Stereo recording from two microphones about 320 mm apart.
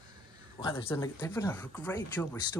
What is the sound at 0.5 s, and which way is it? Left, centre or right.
Speech, centre.